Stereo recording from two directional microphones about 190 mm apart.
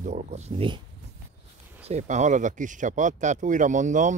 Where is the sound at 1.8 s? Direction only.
40° right (ahead or behind).